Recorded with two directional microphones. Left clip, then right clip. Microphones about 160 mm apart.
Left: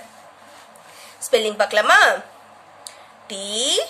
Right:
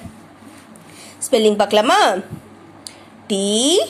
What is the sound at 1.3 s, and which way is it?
Speech, 15° right (ahead or behind).